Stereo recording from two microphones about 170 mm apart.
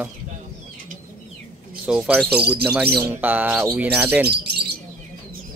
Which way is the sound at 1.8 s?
5° right (ahead or behind).